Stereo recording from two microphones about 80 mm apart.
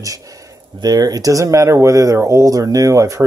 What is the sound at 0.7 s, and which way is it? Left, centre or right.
Speech, right.